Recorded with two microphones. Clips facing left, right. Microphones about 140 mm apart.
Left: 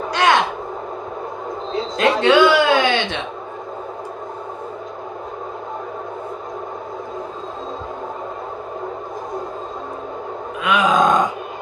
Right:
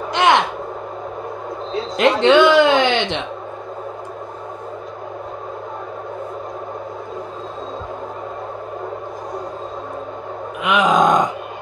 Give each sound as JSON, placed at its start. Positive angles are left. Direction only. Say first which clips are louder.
{"t": 0.1, "sound": "a sound", "louder": "right 2 dB", "side_deg": -20}
{"t": 2.0, "sound": "speech", "louder": "right 2 dB", "side_deg": -20}
{"t": 10.6, "sound": "groan", "louder": "right 1 dB", "side_deg": -20}